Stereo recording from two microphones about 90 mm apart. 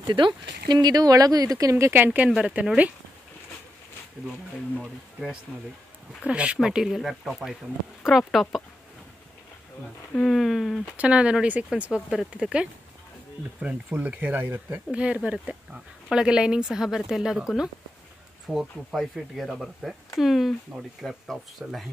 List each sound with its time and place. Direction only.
0.0 s speech: 55° right (ahead or behind); by 2.0 s 30° right (ahead or behind)
2.0 s speech: 15° right (ahead or behind)
4.7 s speech: centre (ahead or behind)
6.2 s speech: 15° right (ahead or behind)
10.1 s speech: 5° left (ahead or behind)
11.0 s speech: 10° right (ahead or behind)